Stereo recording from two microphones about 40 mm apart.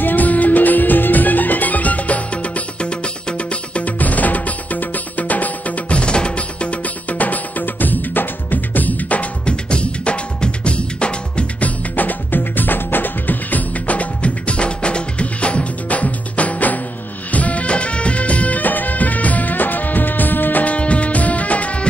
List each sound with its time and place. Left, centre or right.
0.0 s music: left
5.9 s music: left
11.6 s music: left
20.6 s music: left